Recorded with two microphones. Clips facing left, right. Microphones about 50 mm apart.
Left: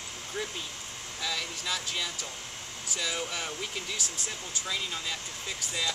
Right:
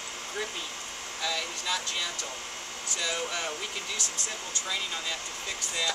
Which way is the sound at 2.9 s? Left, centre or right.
Centre.